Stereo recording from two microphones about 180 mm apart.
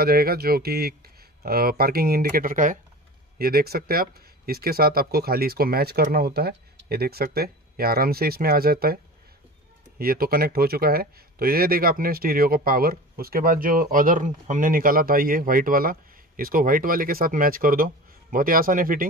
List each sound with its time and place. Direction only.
0.0 s speech: 55° right (ahead or behind)
3.3 s speech: 60° right (ahead or behind)